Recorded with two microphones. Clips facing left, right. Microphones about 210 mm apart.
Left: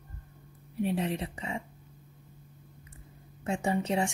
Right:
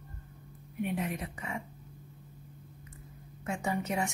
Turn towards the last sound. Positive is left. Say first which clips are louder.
# left 4 dB
turn(degrees=30)  # may be behind; listen again after turning